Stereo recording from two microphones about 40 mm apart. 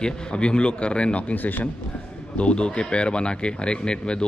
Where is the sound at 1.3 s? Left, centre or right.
Left.